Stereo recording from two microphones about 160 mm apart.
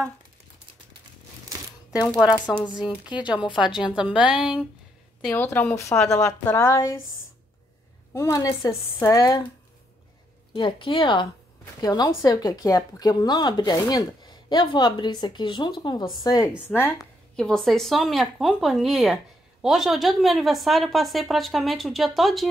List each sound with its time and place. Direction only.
2.5 s a woman's voice: 15° left (ahead or behind)
3.3 s a woman's voice: 30° left (ahead or behind)
3.7 s a woman's voice: 5° right (ahead or behind)
5.3 s a woman's voice: 10° left (ahead or behind)
8.1 s speech: 20° left (ahead or behind)
10.5 s a woman's voice: 30° left (ahead or behind)
16.6 s a woman's voice: 15° left (ahead or behind)